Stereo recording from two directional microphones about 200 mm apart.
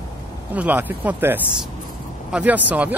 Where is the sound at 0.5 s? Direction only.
10° right (ahead or behind).